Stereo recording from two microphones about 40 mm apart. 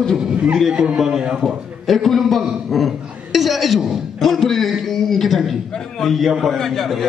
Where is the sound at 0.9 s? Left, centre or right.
Centre.